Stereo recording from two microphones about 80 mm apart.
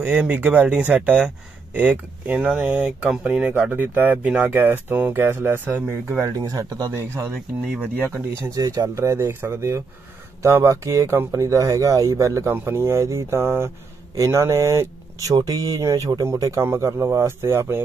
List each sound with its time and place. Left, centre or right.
0.0 s speech: right
6.3 s speech: right
8.5 s speech: right
12.4 s speech: right